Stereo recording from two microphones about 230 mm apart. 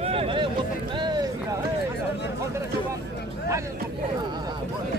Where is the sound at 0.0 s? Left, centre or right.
Right.